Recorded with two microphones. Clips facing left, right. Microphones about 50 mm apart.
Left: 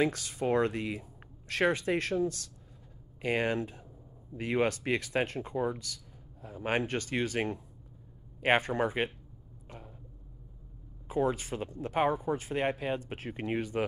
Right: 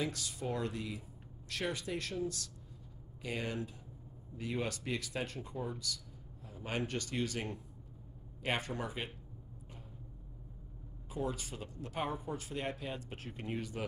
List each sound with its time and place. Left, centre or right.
0.0 s speech: left
11.1 s speech: left